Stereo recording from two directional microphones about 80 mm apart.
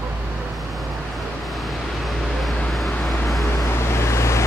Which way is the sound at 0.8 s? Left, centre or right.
Centre.